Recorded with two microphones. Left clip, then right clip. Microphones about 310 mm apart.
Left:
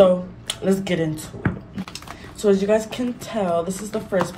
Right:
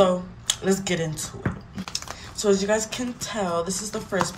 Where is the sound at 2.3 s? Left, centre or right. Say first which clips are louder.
Left 4 dB; centre.